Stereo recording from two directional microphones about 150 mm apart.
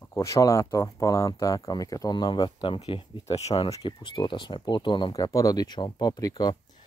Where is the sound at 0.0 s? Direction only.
20° left (ahead or behind); by 3.7 s 45° left (ahead or behind).